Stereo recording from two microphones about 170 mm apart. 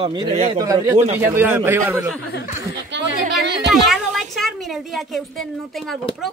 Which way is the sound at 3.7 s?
Centre (ahead or behind).